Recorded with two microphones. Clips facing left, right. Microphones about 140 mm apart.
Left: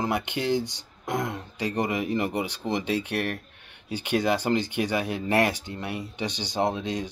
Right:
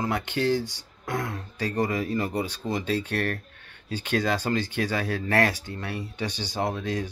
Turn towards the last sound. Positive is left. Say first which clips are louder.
# left 2 dB
turn(degrees=20)  # may be behind; listen again after turning